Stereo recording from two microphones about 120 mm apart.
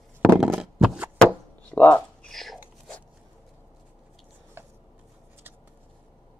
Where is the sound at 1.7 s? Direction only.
15° left (ahead or behind).